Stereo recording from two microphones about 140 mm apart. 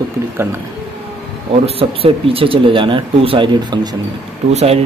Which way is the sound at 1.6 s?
45° right (ahead or behind).